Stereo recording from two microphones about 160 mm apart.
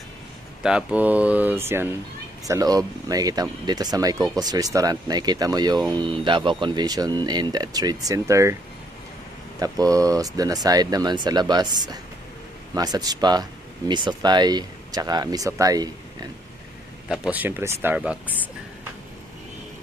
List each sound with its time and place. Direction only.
0.6 s speech: 5° right (ahead or behind)
9.6 s speech: 20° right (ahead or behind)
17.1 s speech: 5° right (ahead or behind)